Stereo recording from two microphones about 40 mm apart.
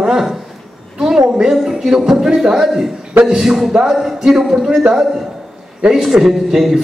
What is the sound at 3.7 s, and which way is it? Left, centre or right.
A man's voice, centre.